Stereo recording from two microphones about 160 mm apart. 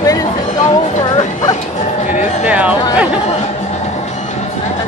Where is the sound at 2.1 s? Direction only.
50° left (ahead or behind).